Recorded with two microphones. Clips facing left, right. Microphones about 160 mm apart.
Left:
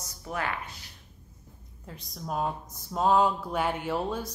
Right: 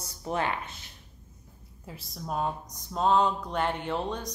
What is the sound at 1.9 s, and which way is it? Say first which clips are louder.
Speech: even; 5° right (ahead or behind).